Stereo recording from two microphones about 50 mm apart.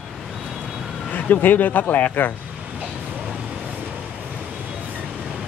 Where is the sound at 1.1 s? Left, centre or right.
Left.